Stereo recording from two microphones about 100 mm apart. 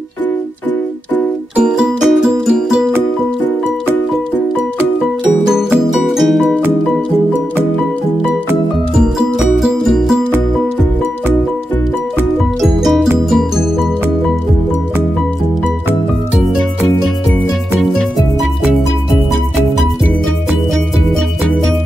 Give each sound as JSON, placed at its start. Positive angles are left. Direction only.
{"t": 1.6, "sound": "music", "side_deg": -5}
{"t": 5.2, "sound": "music", "side_deg": -15}
{"t": 6.0, "sound": "music", "side_deg": 0}
{"t": 9.4, "sound": "music", "side_deg": -5}
{"t": 12.6, "sound": "music", "side_deg": 0}